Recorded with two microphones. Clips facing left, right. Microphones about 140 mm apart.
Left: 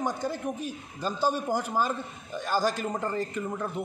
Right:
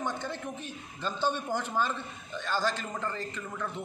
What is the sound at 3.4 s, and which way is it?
Speech, 25° left (ahead or behind).